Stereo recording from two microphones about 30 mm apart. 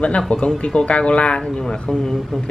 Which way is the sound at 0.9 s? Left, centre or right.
Left.